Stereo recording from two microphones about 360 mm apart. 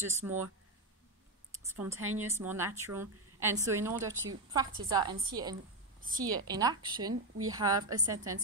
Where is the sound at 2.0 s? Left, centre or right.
Right.